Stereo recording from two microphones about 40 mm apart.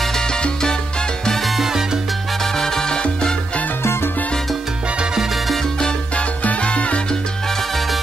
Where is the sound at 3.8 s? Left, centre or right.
Left.